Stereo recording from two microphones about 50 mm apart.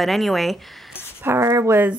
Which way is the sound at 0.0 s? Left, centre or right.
Centre.